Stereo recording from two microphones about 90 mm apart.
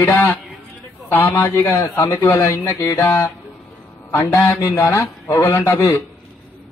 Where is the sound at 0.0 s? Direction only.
20° left (ahead or behind).